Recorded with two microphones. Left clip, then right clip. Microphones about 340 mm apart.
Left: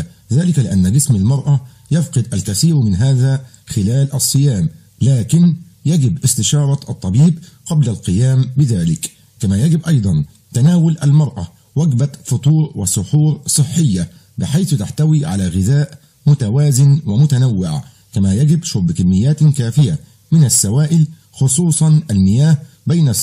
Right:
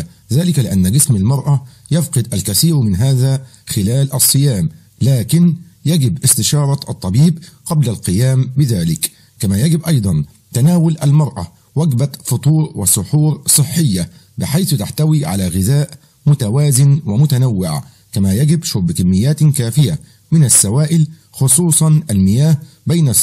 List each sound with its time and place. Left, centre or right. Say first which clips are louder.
0.0 s a sound: right 1 dB; centre
0.6 s speech: right 1 dB; centre
7.1 s speech: even; right
7.6 s speech: right 1 dB; centre
12.4 s speech: right 1 dB; right
12.8 s speech: right 2 dB; centre